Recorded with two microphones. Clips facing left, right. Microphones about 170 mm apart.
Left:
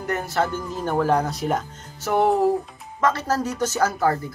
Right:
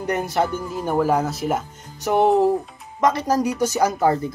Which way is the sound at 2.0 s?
20° right (ahead or behind).